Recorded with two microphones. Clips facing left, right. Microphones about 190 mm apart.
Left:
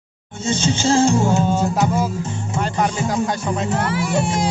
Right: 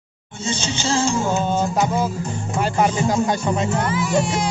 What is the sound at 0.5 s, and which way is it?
Music, 50° left (ahead or behind).